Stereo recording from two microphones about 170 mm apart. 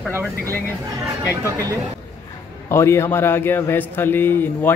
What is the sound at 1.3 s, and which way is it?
Speech, 15° right (ahead or behind).